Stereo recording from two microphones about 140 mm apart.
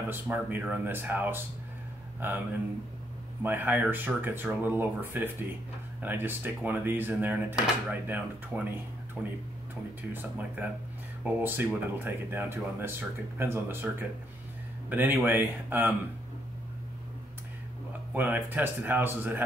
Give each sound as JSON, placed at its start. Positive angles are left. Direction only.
{"t": 0.1, "sound": "speech", "side_deg": -15}
{"t": 3.4, "sound": "speech", "side_deg": -15}
{"t": 18.1, "sound": "speech", "side_deg": -15}